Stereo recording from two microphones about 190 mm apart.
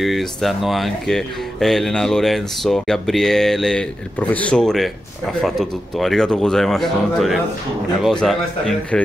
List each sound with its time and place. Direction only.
0.0 s speech: centre (ahead or behind)